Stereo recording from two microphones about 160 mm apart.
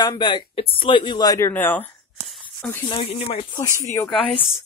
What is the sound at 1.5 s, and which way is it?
Speech, 10° left (ahead or behind).